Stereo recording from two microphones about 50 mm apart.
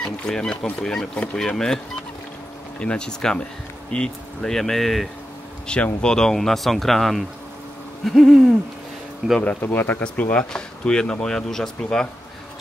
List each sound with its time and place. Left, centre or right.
0.0 s speech: centre
2.8 s speech: centre
9.4 s speech: left
10.1 s speech: left
10.5 s speech: centre